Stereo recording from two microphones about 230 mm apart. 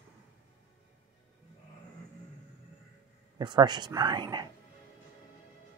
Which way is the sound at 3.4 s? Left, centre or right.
Centre.